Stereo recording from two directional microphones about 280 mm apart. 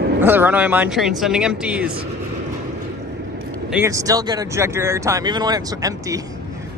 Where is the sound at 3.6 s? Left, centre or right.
Centre.